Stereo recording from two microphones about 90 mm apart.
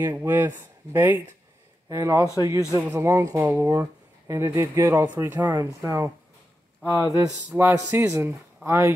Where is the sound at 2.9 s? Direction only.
35° right (ahead or behind).